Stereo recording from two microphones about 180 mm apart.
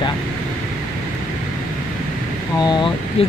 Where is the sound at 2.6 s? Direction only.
25° left (ahead or behind).